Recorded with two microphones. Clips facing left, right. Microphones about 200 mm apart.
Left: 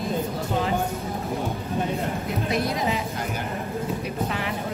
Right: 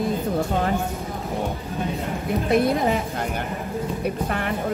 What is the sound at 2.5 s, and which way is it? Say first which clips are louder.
Speech: right 7 dB; 55° right (ahead or behind).